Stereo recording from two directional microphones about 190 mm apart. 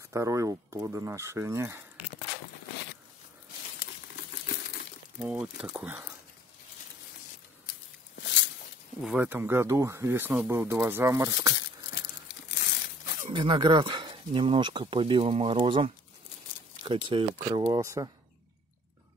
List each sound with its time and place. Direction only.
0.1 s speech: 15° right (ahead or behind)
5.2 s speech: 5° right (ahead or behind)
8.2 s a sound: 75° left (ahead or behind)
9.0 s speech: 10° right (ahead or behind)
12.4 s crumpling: 60° left (ahead or behind)
13.3 s speech: 25° right (ahead or behind)